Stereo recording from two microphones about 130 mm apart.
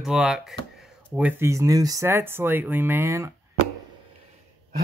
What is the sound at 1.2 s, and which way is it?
Speech, 15° right (ahead or behind).